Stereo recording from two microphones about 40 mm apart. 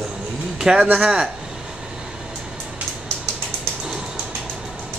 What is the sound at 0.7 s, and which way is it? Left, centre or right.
Speech, centre.